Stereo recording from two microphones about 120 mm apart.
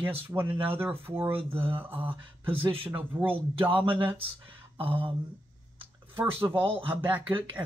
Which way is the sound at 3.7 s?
45° right (ahead or behind).